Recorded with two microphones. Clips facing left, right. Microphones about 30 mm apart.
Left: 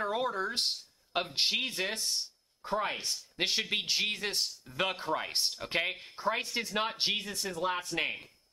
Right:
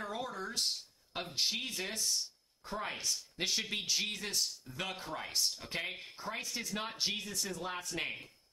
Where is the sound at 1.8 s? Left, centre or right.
Left.